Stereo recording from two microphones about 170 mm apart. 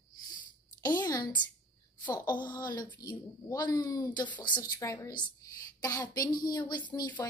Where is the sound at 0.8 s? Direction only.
20° left (ahead or behind).